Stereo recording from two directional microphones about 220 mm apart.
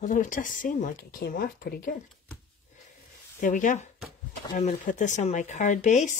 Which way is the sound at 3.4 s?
35° left (ahead or behind).